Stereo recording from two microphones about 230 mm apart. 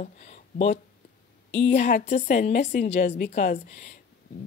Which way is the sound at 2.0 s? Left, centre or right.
Left.